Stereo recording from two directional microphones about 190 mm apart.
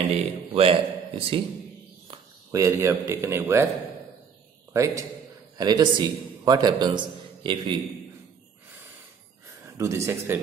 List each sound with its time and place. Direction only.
0.6 s a man's voice: 30° right (ahead or behind)
2.0 s speech: 15° right (ahead or behind)
4.7 s a man's voice: 15° right (ahead or behind)
9.8 s speech: 15° right (ahead or behind)